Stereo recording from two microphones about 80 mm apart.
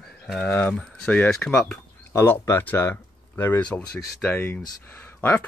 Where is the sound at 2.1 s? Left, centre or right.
Left.